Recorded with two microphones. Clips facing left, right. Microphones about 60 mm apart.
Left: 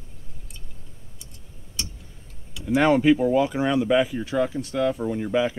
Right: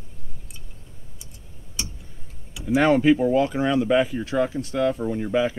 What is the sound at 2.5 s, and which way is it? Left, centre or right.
Speech, centre.